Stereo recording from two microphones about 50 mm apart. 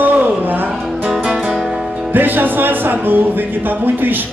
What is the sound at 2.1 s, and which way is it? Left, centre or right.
Speech, right.